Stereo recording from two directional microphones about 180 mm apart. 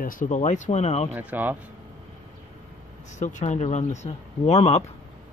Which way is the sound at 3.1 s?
40° left (ahead or behind).